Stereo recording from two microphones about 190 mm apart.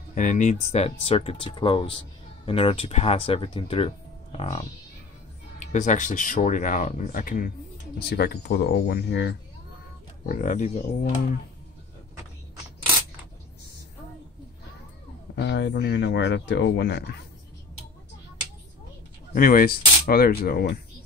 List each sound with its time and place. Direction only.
0.1 s speech: 40° left (ahead or behind)
7.7 s speech: 60° left (ahead or behind)
10.2 s speech: 45° left (ahead or behind)
15.3 s speech: 65° left (ahead or behind)
19.3 s speech: 45° left (ahead or behind)